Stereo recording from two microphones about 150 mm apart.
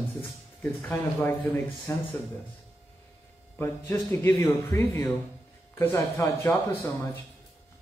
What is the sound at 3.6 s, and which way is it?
A man's voice, 20° left (ahead or behind).